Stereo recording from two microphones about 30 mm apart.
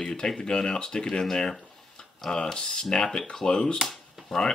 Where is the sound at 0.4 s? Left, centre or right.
Left.